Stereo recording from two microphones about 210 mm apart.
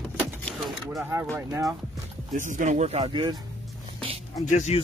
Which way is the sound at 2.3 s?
35° right (ahead or behind).